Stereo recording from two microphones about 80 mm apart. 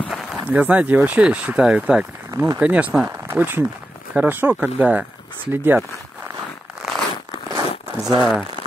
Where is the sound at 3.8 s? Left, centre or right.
Centre.